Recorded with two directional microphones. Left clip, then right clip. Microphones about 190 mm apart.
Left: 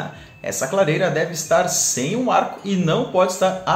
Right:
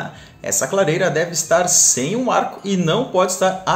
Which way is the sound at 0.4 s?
25° right (ahead or behind).